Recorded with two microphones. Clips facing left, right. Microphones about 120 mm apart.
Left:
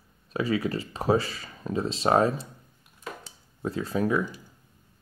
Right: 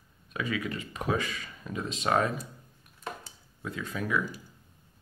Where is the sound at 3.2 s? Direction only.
35° left (ahead or behind).